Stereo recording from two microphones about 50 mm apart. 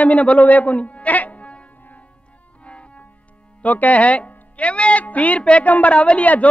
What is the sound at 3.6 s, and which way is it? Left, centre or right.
Speech, left.